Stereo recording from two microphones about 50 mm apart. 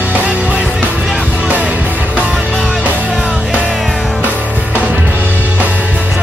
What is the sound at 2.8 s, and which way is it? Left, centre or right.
Music, right.